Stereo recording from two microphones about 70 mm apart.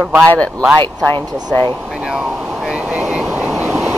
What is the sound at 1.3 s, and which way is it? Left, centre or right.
Speech, right.